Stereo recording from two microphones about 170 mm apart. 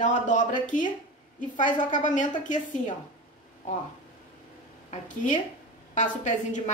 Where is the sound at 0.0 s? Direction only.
45° left (ahead or behind).